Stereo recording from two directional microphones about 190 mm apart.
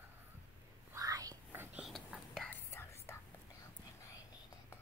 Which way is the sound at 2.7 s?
15° left (ahead or behind).